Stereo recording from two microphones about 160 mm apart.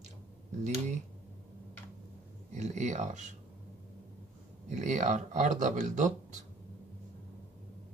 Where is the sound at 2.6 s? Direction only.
50° right (ahead or behind).